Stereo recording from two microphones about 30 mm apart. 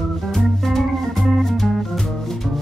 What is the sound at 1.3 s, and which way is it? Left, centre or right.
Music, centre.